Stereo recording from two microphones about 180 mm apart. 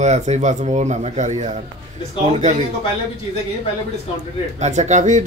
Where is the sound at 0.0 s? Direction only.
40° right (ahead or behind).